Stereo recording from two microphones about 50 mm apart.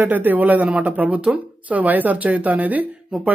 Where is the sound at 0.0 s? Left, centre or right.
Right.